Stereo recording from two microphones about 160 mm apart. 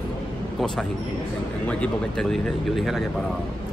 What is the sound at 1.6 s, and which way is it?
Speech, 5° left (ahead or behind).